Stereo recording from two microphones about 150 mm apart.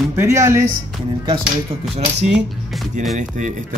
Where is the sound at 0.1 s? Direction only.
20° right (ahead or behind).